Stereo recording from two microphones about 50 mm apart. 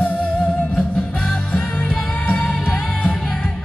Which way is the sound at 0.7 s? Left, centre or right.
Centre.